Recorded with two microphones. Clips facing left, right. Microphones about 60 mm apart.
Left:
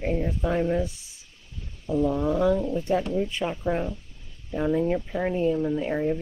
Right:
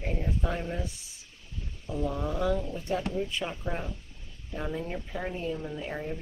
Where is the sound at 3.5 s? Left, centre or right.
Left.